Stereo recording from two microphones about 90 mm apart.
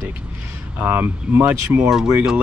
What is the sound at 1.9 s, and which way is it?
Speech, 5° right (ahead or behind).